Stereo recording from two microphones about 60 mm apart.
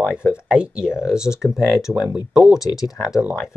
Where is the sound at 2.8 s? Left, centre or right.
Left.